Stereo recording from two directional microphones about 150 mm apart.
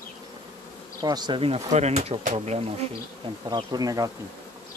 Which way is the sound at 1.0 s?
30° right (ahead or behind).